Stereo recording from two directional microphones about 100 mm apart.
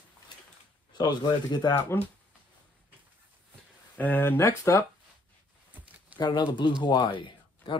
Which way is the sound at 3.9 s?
20° left (ahead or behind).